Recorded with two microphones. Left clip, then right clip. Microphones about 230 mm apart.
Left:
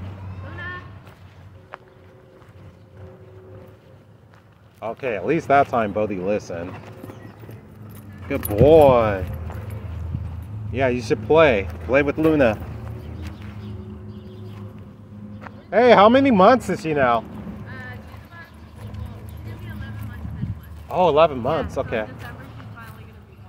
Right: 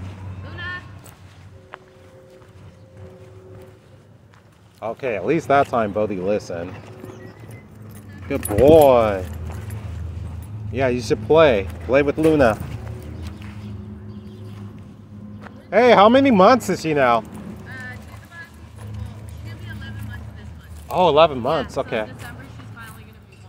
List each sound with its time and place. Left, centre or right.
4.7 s speech: centre
8.5 s speech: centre
10.7 s speech: centre
15.7 s speech: centre
17.6 s clip-clop: centre
20.9 s speech: centre